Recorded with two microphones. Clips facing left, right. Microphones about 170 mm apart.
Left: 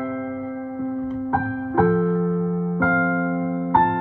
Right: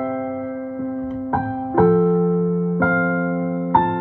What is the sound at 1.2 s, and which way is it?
Music, 50° right (ahead or behind).